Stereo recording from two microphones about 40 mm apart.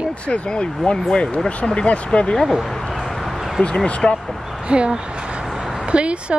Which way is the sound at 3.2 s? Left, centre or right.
Centre.